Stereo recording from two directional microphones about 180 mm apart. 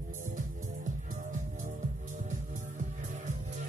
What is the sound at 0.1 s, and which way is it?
Music, 45° right (ahead or behind).